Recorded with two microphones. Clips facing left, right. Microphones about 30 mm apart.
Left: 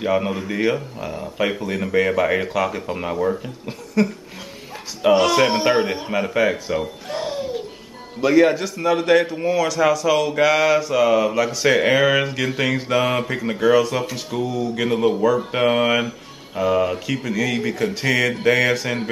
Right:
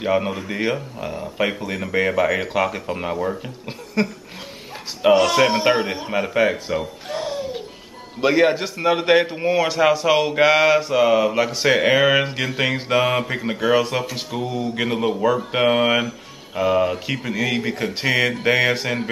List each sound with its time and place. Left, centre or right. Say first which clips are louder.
0.0 s speech: even; centre
2.4 s speech: even; centre
2.9 s speech: left 2 dB; centre
3.6 s a sound: left 2 dB; right
5.1 s speech: even; centre
8.2 s a man's voice: left 1 dB; right; by 17.0 s centre
17.0 s a man's voice: left 1 dB; centre